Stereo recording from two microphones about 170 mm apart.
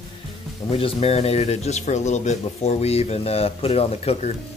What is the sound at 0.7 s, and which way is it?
Speech, 35° left (ahead or behind).